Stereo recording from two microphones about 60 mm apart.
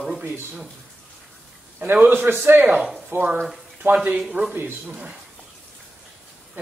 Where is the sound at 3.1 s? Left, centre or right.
Right.